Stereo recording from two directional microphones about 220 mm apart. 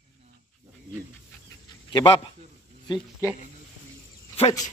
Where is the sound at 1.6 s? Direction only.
20° left (ahead or behind).